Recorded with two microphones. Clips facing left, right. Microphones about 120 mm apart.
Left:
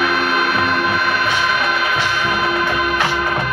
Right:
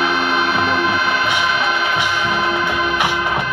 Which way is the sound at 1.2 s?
15° right (ahead or behind).